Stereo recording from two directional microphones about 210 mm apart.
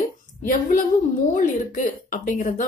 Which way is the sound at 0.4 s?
40° left (ahead or behind).